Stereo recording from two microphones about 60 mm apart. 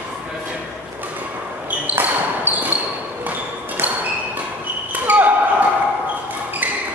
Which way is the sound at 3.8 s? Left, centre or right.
Right.